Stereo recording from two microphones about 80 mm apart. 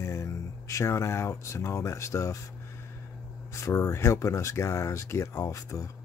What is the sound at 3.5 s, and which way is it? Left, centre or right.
Speech, left.